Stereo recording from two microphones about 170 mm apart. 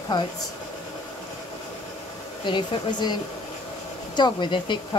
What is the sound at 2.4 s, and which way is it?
Speech, 25° left (ahead or behind).